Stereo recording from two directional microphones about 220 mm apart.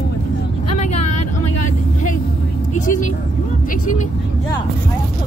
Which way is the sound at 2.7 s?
35° left (ahead or behind).